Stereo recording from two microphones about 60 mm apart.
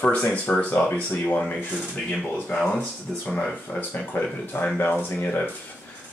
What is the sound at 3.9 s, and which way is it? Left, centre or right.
Speech, left.